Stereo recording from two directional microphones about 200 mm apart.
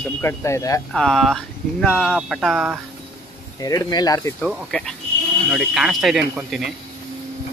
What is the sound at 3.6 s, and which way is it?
Speech, 20° left (ahead or behind).